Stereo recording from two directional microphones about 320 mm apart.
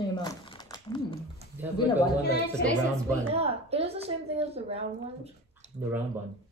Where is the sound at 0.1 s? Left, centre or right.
Centre.